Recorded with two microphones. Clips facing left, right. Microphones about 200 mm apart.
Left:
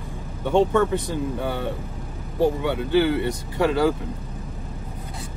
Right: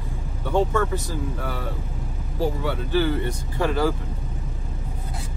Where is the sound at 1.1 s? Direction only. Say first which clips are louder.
Left 4 dB; 25° left (ahead or behind).